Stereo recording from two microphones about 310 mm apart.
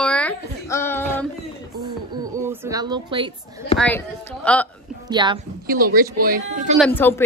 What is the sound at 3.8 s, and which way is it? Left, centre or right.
Speech, centre.